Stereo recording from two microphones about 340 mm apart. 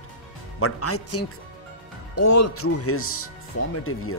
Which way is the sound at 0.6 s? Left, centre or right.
Left.